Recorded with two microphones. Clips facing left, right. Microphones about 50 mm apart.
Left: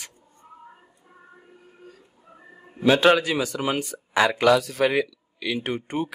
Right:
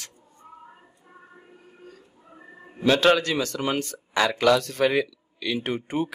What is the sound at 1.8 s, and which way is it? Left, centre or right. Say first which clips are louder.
Oink: right 1 dB; centre.